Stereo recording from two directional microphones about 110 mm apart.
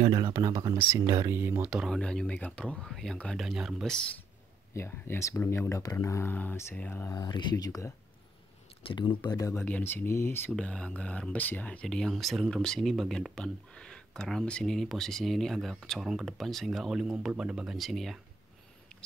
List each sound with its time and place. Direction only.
0.3 s speech: 25° right (ahead or behind)
1.3 s speech: 20° right (ahead or behind)
1.7 s speech: 5° right (ahead or behind)
2.0 s speech: 10° left (ahead or behind)
3.8 s speech: 5° left (ahead or behind)
4.7 s speech: 25° left (ahead or behind)
7.1 s speech: 40° left (ahead or behind)
8.8 s speech: 50° left (ahead or behind)
9.5 s speech: 15° left (ahead or behind)
10.5 s speech: 10° left (ahead or behind)